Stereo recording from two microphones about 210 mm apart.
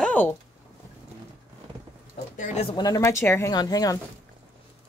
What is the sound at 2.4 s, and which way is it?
Speech, 30° left (ahead or behind).